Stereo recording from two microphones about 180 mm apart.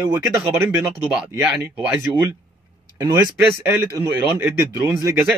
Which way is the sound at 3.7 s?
15° right (ahead or behind).